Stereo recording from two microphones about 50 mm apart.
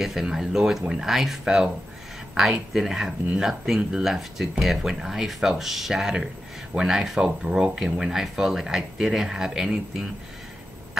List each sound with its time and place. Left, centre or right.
0.0 s speech: centre